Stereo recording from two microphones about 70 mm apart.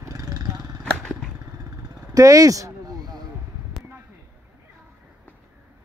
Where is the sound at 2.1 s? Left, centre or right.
Right.